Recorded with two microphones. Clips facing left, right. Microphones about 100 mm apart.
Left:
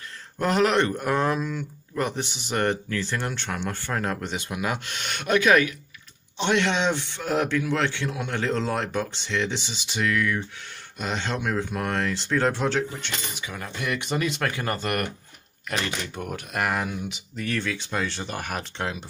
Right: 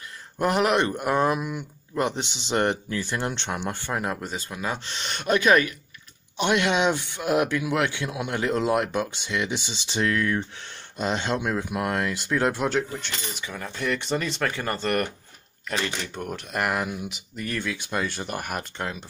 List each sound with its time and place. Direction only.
0.4 s speech: 15° right (ahead or behind)
4.5 s speech: 10° left (ahead or behind)
4.7 s speech: 40° right (ahead or behind)
6.3 s speech: 10° right (ahead or behind)
9.8 s speech: 30° right (ahead or behind)
11.0 s speech: 20° right (ahead or behind); by 19.0 s centre (ahead or behind)